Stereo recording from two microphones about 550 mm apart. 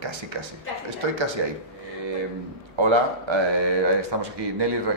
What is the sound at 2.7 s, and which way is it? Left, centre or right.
Speech, right.